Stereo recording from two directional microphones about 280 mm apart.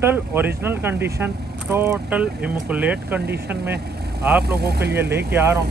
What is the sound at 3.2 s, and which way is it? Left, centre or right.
Speech, right.